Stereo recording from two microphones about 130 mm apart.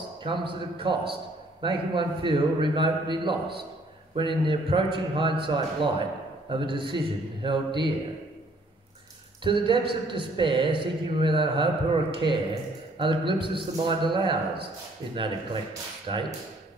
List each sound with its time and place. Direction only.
0.2 s speech: 40° right (ahead or behind)
9.4 s speech: 40° right (ahead or behind)